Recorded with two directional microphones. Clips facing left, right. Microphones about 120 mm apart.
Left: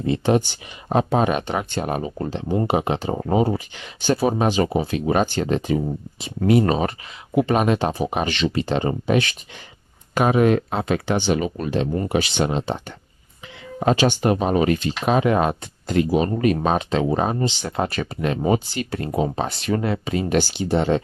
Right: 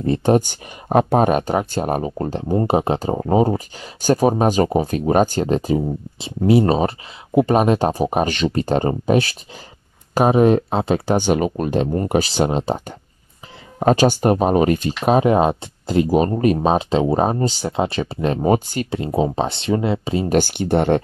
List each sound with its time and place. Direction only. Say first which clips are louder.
0.0 s speech: right 3 dB; 45° right (ahead or behind); by 11.1 s 30° right (ahead or behind)
11.1 s speech: right 4 dB; 50° right (ahead or behind)
17.6 s speech: right 3 dB; 25° right (ahead or behind); by 18.9 s 45° right (ahead or behind)
18.9 s speech: right 3 dB; 25° right (ahead or behind)
20.3 s speech: right 3 dB; 55° right (ahead or behind)